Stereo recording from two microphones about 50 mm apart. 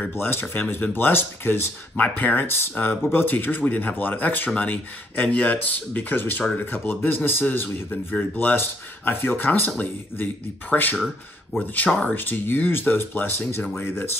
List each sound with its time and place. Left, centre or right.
0.1 s speech: left
2.0 s speech: left
2.4 s speech: left
11.9 s speech: left
12.2 s speech: left